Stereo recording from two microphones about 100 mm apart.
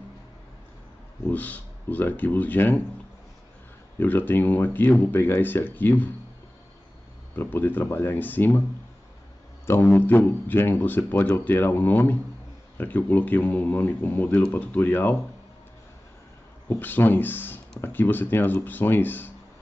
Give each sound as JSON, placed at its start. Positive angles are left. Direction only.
{"t": 1.2, "sound": "speech", "side_deg": 15}
{"t": 4.0, "sound": "speech", "side_deg": 20}
{"t": 7.3, "sound": "speech", "side_deg": 20}
{"t": 9.9, "sound": "speech", "side_deg": 20}
{"t": 16.6, "sound": "speech", "side_deg": 20}